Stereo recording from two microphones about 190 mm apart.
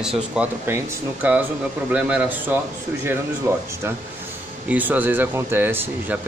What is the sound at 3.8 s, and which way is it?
Speech, 15° right (ahead or behind).